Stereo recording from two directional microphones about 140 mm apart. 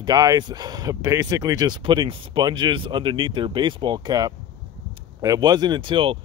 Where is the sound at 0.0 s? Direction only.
30° right (ahead or behind).